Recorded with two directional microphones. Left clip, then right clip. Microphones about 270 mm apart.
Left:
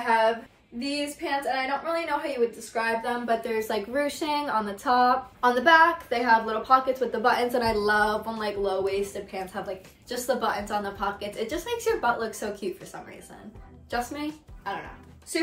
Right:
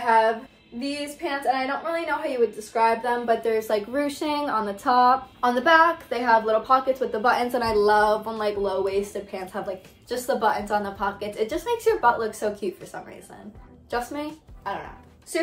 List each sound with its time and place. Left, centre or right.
0.0 s a sound: centre
0.7 s a woman's voice: centre
13.8 s speech: centre